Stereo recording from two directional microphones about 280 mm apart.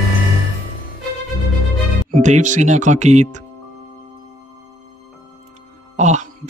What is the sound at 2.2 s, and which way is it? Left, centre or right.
Speech, right.